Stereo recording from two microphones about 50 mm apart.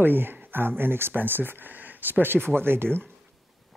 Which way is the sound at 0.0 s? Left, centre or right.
Right.